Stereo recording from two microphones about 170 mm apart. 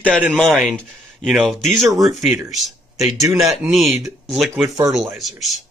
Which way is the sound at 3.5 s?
Centre (ahead or behind).